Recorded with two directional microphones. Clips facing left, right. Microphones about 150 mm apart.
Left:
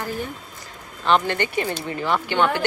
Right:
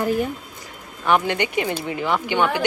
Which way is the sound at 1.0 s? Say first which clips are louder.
Even; 15° right (ahead or behind).